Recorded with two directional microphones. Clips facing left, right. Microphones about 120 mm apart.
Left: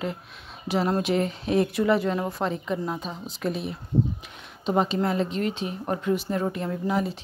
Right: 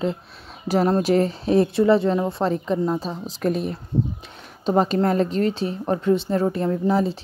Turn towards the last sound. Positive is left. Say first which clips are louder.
# right 6 dB
turn(degrees=-30)  # may be behind; listen again after turning